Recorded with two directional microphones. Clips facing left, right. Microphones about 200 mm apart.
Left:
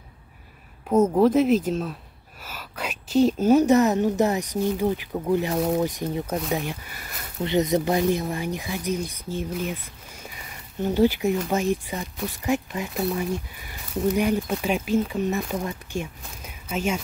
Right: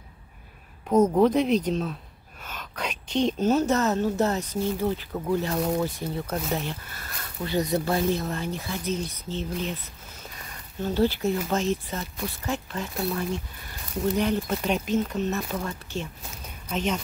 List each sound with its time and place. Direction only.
0.8 s speech: 5° left (ahead or behind)
10.8 s speech: 15° left (ahead or behind)